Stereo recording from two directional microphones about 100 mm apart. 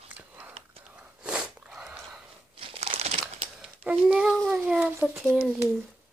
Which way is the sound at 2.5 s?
80° right.